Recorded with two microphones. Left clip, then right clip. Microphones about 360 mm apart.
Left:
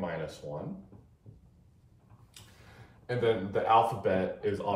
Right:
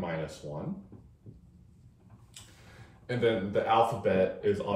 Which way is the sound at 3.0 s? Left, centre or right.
Centre.